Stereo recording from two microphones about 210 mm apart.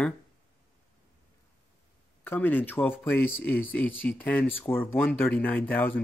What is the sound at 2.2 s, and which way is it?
Speech, 10° left (ahead or behind).